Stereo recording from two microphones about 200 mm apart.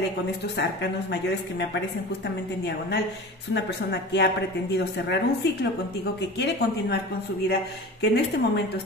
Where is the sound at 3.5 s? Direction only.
60° left (ahead or behind).